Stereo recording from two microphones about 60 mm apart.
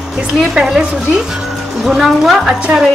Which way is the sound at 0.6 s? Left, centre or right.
Centre.